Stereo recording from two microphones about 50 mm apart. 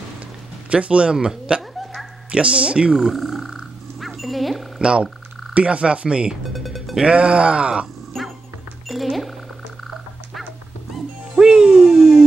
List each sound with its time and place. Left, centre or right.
0.7 s speech: right
3.0 s speech: centre
4.0 s music: centre
4.7 s speech: centre
6.5 s music: centre
7.1 s speech: right
8.2 s music: centre
11.3 s music: centre